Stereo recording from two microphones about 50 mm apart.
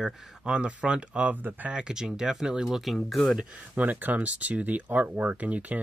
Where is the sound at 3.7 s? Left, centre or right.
Right.